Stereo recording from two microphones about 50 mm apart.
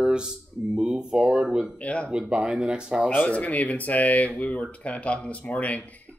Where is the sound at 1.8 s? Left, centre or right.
Left.